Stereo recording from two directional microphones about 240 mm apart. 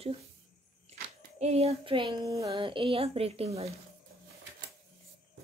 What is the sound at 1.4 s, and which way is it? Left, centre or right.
Speech, right.